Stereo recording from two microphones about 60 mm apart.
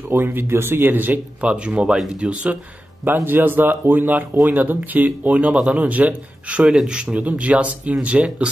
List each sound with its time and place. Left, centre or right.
0.1 s speech: right
1.4 s speech: centre
3.3 s speech: right; by 5.9 s centre
5.9 s speech: right
6.7 s speech: centre